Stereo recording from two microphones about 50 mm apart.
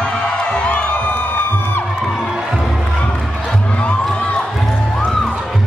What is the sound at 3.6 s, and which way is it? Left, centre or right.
Music, left.